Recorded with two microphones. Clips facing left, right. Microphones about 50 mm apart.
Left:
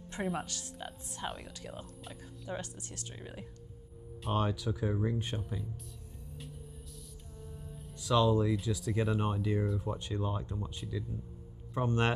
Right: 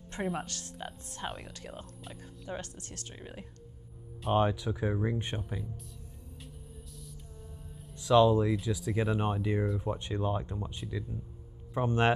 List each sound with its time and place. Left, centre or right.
0.2 s speech: centre
0.8 s speech: centre
2.5 s speech: centre
8.0 s speech: right
9.2 s speech: right